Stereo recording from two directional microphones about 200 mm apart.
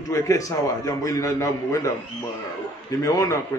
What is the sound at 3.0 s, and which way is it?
Speech, 20° left (ahead or behind).